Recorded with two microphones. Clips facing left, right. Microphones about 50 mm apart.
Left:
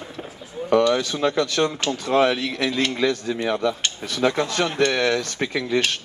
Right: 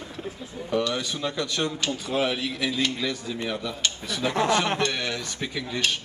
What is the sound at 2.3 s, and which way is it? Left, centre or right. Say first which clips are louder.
Speech: left 5 dB; centre.